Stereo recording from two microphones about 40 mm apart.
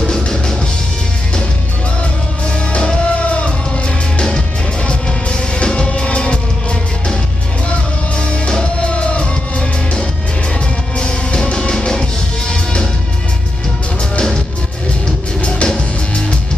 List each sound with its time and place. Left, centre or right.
0.1 s music: centre
2.7 s music: left
4.8 s music: left
8.2 s music: left
15.4 s music: left